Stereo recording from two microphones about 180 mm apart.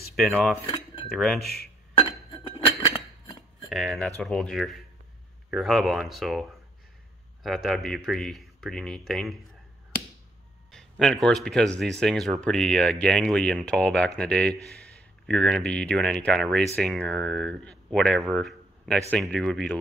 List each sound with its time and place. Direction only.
0.1 s cutlery: 5° left (ahead or behind)
0.7 s cutlery: 30° left (ahead or behind)
1.1 s speech: centre (ahead or behind)
2.0 s music: 25° left (ahead or behind)
3.6 s speech: centre (ahead or behind)
7.4 s speech: centre (ahead or behind)
10.7 s speech: 5° left (ahead or behind)